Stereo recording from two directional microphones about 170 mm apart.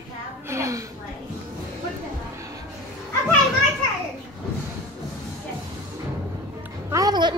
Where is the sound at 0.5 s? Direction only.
20° right (ahead or behind).